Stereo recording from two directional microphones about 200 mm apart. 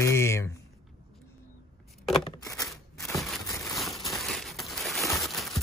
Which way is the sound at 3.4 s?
15° left (ahead or behind).